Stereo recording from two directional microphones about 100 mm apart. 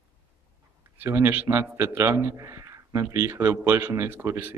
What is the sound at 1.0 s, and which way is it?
A man's voice, 25° right (ahead or behind).